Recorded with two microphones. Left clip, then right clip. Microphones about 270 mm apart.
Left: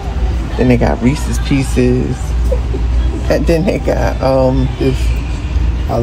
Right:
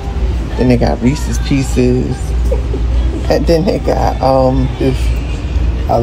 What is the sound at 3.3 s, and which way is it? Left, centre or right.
Speech, centre.